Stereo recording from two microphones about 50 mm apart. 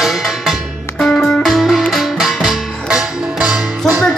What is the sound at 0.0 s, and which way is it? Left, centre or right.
Music, centre.